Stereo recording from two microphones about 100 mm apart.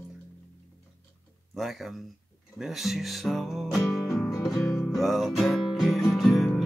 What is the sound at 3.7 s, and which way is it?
Music, centre (ahead or behind).